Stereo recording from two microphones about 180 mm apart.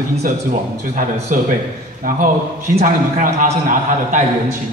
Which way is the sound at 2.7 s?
50° right (ahead or behind).